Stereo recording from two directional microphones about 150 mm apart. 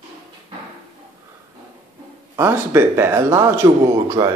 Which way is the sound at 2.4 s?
15° right (ahead or behind).